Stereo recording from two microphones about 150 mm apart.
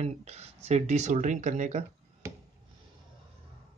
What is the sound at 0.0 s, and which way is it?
Speech, 45° right (ahead or behind).